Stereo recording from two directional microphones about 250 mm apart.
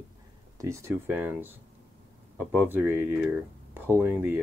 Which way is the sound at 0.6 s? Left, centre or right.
Centre.